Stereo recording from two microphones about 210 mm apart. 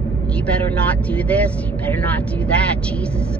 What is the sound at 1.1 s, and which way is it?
Speech, 5° left (ahead or behind).